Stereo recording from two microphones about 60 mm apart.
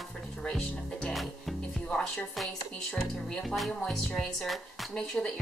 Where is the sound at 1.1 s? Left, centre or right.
Centre.